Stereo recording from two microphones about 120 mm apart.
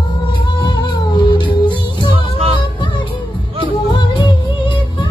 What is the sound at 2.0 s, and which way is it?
Music, 50° right (ahead or behind).